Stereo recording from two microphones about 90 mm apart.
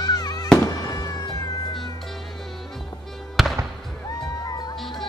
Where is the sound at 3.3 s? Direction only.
Centre (ahead or behind).